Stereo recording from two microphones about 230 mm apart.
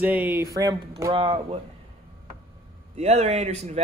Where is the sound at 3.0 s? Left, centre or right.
Right.